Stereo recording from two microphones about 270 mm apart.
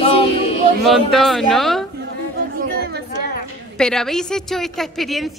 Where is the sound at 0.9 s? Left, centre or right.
Centre.